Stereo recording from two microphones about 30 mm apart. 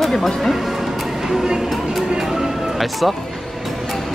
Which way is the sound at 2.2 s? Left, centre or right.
Centre.